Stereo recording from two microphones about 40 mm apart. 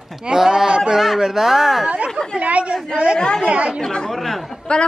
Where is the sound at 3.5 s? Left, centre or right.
Right.